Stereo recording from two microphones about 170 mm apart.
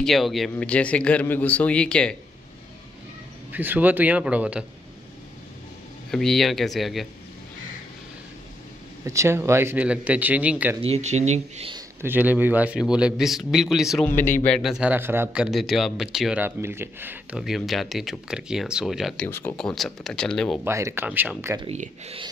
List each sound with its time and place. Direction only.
0.0 s speech: centre (ahead or behind)
3.5 s speech: 10° right (ahead or behind)
6.1 s a man's voice: centre (ahead or behind)
9.0 s speech: 15° right (ahead or behind)
10.8 s speech: 40° right (ahead or behind)
12.0 s a man's voice: 10° right (ahead or behind)
17.4 s a man's voice: centre (ahead or behind)
19.2 s a man's voice: 10° left (ahead or behind)
20.6 s speech: 15° right (ahead or behind)
21.7 s speech: 40° right (ahead or behind)